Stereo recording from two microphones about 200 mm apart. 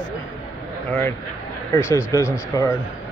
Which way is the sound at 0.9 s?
10° left (ahead or behind).